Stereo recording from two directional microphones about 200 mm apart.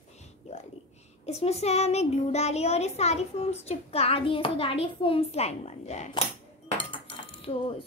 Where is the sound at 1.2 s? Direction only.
30° left (ahead or behind).